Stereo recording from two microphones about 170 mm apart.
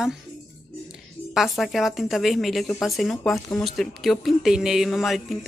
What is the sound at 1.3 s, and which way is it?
Speech, centre (ahead or behind).